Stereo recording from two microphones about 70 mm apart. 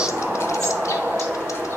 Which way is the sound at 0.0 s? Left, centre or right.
Centre.